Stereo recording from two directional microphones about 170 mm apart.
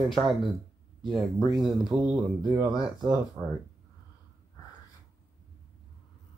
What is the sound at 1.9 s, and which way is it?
A man's voice, 5° right (ahead or behind).